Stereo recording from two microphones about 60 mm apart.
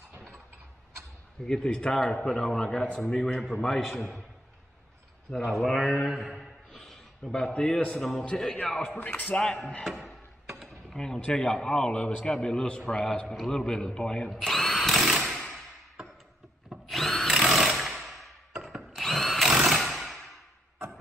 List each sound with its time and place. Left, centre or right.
1.4 s a man's voice: centre
5.3 s a man's voice: centre
8.9 s speech: left
9.3 s a man's voice: centre
9.8 s a sound: centre
11.0 s a man's voice: centre
14.4 s drill: centre
16.8 s drill: centre
18.0 s a sound: centre
18.9 s tools: centre
19.6 s a sound: centre